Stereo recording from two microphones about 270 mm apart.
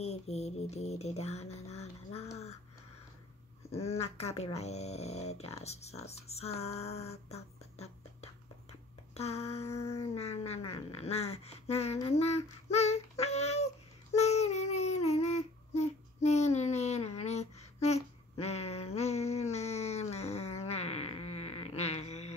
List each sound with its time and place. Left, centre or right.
0.0 s speech: left
3.7 s speech: left
13.2 s a sound: left
15.0 s child singing: left